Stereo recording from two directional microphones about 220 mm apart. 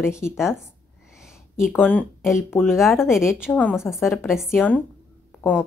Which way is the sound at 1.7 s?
5° left (ahead or behind).